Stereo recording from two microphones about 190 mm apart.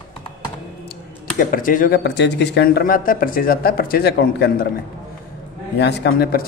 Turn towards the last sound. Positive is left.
turn(degrees=55)  # may be behind; listen again after turning